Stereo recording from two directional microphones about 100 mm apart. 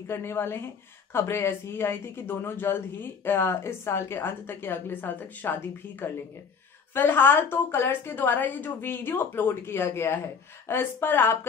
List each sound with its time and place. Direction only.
0.1 s a woman's voice: 25° left (ahead or behind)